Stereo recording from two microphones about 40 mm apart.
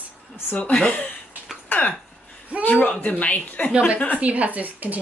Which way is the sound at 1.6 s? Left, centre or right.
Left.